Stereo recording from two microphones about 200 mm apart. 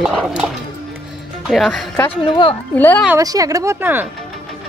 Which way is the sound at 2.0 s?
25° left (ahead or behind).